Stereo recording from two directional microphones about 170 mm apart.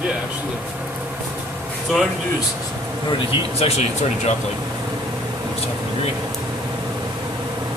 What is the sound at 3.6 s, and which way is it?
Speech, 40° left (ahead or behind).